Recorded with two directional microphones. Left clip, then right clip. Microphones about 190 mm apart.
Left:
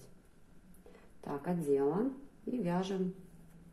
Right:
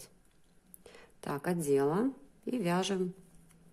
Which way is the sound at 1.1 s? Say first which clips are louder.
Right 3 dB; 45° right (ahead or behind).